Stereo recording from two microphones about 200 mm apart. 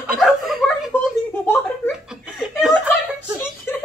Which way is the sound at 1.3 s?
10° left (ahead or behind).